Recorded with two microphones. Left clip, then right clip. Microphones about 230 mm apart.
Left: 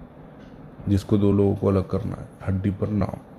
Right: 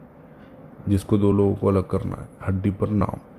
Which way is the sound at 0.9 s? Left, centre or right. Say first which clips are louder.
Right 1 dB; centre.